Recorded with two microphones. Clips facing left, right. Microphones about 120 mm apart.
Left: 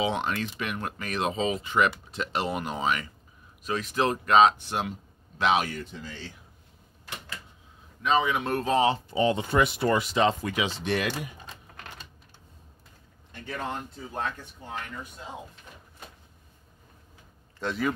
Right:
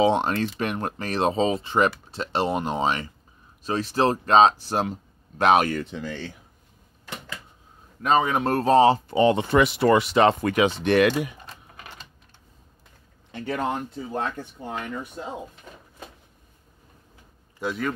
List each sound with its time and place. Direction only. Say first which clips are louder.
0.0 s speech: right 7 dB; 35° right (ahead or behind)
5.4 s speech: right 6 dB; 50° right (ahead or behind)
8.0 s speech: right 4 dB; 45° right (ahead or behind)
9.1 s speech: right 5 dB; 65° right (ahead or behind)
13.3 s speech: right 8 dB; 90° right
17.6 s speech: right 2 dB; 10° right (ahead or behind)